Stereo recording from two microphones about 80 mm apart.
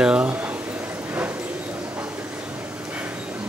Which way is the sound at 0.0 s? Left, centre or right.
Centre.